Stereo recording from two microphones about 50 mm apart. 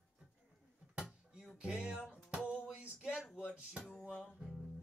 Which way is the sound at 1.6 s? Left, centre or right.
Centre.